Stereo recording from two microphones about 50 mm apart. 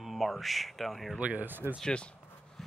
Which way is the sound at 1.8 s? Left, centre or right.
Left.